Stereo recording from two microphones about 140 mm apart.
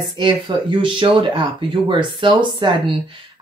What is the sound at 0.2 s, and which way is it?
Speech, 35° right (ahead or behind).